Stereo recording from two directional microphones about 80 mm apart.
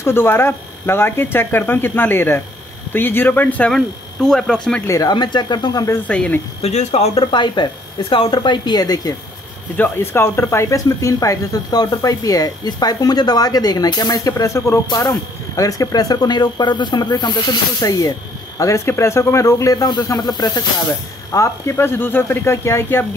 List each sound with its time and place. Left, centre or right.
0.0 s speech: left
3.7 s speech: centre
4.8 s speech: left
5.1 s speech: left
6.0 s speech: centre
7.2 s speech: left
9.8 s speech: left
14.3 s speech: left
18.6 s speech: left
21.3 s speech: left
21.7 s speech: left